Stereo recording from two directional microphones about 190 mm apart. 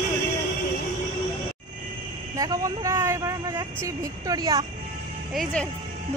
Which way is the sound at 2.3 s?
20° right (ahead or behind).